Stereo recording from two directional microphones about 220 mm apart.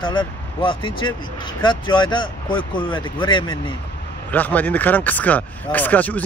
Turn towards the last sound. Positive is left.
turn(degrees=5)  # may be behind; listen again after turning